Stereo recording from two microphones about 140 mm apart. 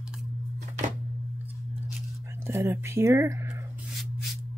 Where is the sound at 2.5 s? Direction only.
20° right (ahead or behind).